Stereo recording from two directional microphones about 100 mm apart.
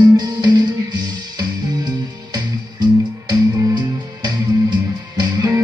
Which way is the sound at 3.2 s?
45° right (ahead or behind).